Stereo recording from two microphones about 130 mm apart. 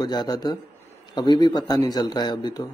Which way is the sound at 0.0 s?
30° left (ahead or behind).